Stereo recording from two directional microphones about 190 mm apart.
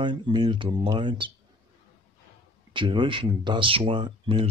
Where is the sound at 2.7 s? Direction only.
25° right (ahead or behind).